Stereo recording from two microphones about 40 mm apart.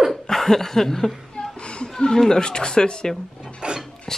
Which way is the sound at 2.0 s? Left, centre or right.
Centre.